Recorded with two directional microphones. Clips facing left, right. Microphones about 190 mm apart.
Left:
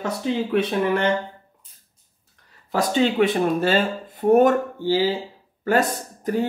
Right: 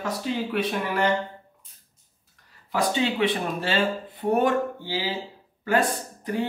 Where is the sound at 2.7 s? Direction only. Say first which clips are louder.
Left 4 dB; 45° left (ahead or behind).